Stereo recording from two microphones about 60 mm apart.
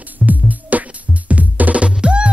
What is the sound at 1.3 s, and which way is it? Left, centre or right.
Music, right.